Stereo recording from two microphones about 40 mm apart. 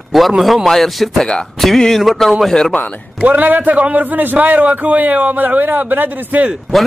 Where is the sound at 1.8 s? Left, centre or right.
Centre.